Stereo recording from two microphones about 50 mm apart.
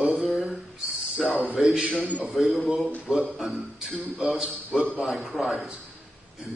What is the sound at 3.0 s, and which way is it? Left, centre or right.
Speech, centre.